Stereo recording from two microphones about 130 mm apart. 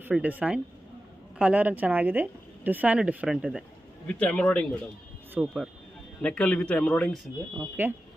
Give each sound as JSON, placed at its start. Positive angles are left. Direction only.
{"t": 0.0, "sound": "speech", "side_deg": -10}
{"t": 4.1, "sound": "a man's voice", "side_deg": 10}
{"t": 5.4, "sound": "speech", "side_deg": -5}
{"t": 6.2, "sound": "a man's voice", "side_deg": 10}
{"t": 7.8, "sound": "speech", "side_deg": -15}